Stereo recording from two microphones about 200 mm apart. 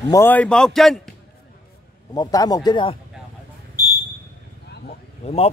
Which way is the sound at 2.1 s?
20° left (ahead or behind).